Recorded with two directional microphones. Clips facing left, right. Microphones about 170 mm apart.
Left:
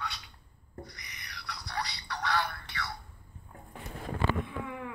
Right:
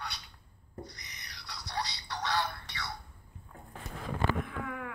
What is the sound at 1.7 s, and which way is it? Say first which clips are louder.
Music: even; 20° right (ahead or behind).